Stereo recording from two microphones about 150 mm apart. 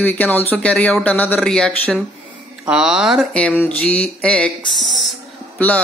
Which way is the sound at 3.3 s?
10° left (ahead or behind).